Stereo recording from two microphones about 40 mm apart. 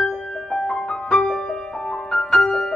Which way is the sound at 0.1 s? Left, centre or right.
Centre.